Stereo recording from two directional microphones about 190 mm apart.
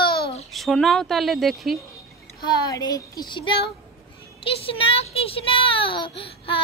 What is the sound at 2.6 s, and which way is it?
A child's voice, 20° left (ahead or behind).